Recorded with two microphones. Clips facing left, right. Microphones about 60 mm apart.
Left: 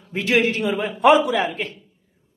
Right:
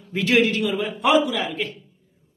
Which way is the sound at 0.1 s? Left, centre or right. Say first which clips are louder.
Even; left.